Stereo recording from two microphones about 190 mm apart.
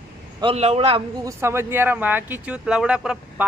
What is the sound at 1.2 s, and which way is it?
Speech, 15° right (ahead or behind).